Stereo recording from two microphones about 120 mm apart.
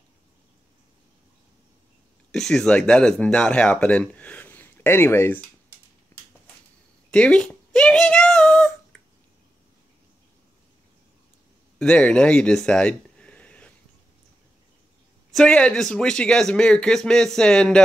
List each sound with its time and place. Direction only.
2.3 s speech: 5° left (ahead or behind); by 5.4 s 20° left (ahead or behind)
6.1 s a sound: 20° left (ahead or behind)
7.1 s speech: 10° left (ahead or behind)
8.9 s a sound: 5° left (ahead or behind)
11.8 s speech: 10° left (ahead or behind)
15.3 s speech: 5° left (ahead or behind)